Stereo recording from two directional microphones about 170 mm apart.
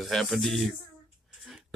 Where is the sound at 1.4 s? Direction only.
Centre (ahead or behind).